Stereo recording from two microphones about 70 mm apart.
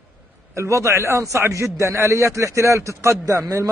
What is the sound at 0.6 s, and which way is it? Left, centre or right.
A man's voice, right.